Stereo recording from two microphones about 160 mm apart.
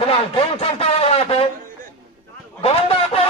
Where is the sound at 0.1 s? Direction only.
40° left (ahead or behind).